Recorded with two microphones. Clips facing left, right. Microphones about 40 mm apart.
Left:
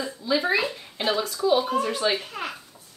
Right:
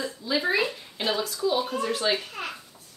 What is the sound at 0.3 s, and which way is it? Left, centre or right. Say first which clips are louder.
Speech: left 2 dB; centre.